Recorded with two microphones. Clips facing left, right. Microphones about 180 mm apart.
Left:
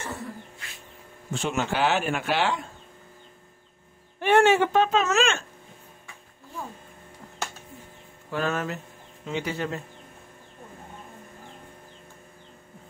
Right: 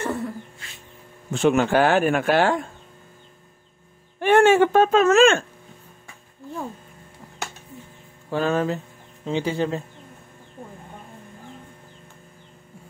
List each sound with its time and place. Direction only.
1.3 s speech: 60° right (ahead or behind)
4.2 s speech: 50° right (ahead or behind)
8.3 s speech: 30° right (ahead or behind)